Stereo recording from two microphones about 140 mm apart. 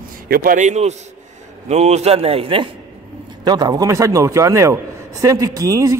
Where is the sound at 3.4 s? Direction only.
30° right (ahead or behind).